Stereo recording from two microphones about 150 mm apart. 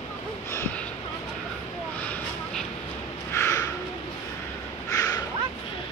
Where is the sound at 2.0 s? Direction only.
10° left (ahead or behind).